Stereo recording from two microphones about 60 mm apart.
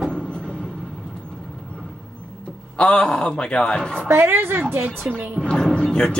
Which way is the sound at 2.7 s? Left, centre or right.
Centre.